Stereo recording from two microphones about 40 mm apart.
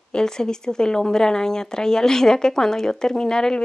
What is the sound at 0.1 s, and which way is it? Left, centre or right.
A woman's voice, centre.